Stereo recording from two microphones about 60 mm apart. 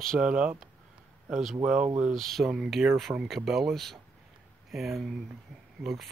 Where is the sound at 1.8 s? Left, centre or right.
Centre.